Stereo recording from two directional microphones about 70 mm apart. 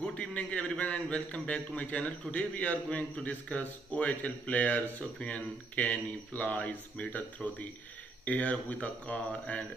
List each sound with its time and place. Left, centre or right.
0.0 s a man's voice: centre